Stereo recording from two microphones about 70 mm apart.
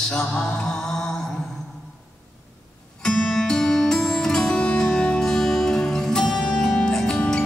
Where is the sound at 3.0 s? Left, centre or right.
Centre.